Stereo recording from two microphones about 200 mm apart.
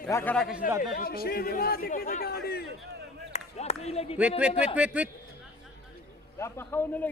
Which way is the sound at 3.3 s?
30° left (ahead or behind).